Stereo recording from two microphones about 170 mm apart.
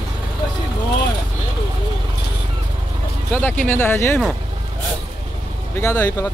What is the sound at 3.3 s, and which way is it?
Speech, 10° left (ahead or behind).